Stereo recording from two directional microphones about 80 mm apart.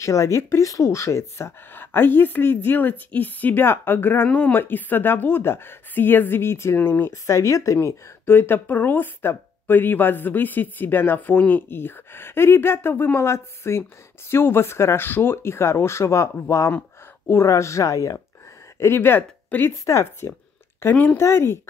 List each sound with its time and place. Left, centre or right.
0.0 s speech: left
1.7 s a woman's voice: left
18.8 s a woman's voice: left
20.9 s a woman's voice: centre
21.2 s speech: left